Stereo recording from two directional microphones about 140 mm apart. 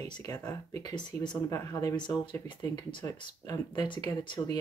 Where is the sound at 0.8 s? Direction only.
30° left (ahead or behind).